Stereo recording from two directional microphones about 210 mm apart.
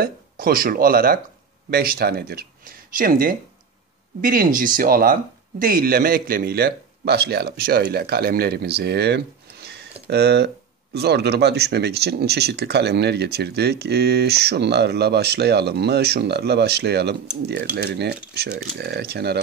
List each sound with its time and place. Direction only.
0.0 s speech: 45° right (ahead or behind)